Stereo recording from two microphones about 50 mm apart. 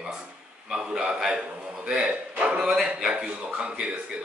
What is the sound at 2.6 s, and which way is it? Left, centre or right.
Speech, centre.